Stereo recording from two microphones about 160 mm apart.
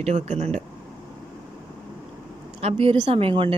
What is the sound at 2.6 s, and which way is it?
Speech, 40° right (ahead or behind).